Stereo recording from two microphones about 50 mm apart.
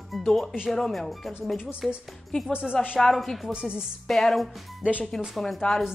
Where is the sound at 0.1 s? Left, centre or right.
Centre.